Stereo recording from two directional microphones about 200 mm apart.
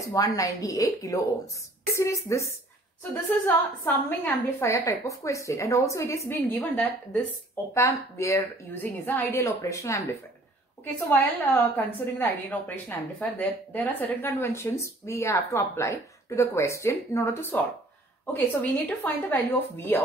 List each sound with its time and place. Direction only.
0.0 s a woman's voice: 15° left (ahead or behind)
11.1 s a woman's voice: 10° left (ahead or behind)